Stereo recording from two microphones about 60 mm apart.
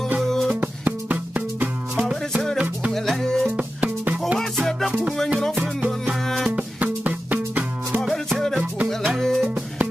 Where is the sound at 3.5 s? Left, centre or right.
Right.